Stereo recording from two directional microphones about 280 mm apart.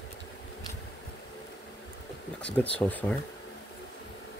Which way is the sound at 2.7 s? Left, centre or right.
Centre.